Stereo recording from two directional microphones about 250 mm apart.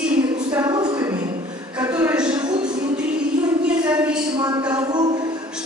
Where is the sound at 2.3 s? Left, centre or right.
Centre.